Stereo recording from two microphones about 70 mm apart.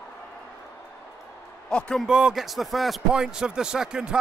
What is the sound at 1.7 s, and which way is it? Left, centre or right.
Speech, centre.